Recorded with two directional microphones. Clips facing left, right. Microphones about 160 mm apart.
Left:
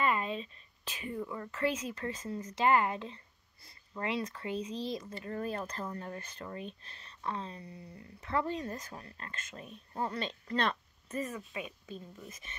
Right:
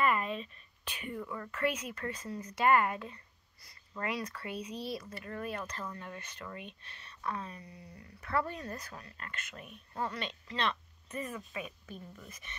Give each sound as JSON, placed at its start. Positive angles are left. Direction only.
{"t": 0.0, "sound": "speech", "side_deg": 25}
{"t": 10.5, "sound": "speech", "side_deg": 45}
{"t": 11.1, "sound": "speech", "side_deg": 30}